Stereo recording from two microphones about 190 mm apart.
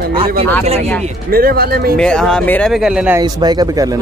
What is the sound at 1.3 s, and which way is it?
Speech, 50° right (ahead or behind).